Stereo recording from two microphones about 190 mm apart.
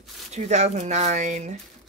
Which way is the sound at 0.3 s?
35° right (ahead or behind).